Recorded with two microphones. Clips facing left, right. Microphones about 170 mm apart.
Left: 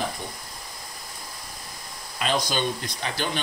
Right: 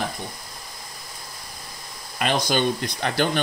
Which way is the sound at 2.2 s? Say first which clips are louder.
Right 3 dB; 60° right (ahead or behind).